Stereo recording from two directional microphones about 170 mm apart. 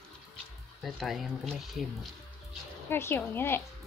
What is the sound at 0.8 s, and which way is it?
Speech, centre (ahead or behind).